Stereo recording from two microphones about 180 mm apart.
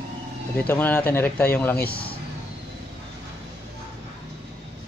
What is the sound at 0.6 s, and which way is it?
Speech, 10° left (ahead or behind).